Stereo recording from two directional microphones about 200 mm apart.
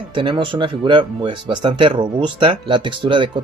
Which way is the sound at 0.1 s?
25° right (ahead or behind).